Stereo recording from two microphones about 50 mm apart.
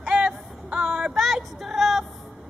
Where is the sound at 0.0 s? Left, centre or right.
Centre.